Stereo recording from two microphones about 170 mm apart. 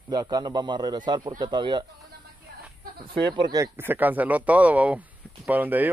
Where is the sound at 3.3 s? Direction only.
25° right (ahead or behind).